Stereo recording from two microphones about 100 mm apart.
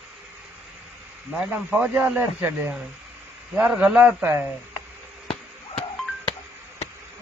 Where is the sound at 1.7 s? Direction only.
15° right (ahead or behind).